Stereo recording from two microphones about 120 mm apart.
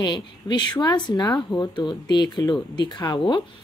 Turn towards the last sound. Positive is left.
turn(degrees=35)  # may be behind; listen again after turning